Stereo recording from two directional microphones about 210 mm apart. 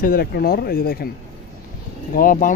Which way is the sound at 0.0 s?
45° left (ahead or behind).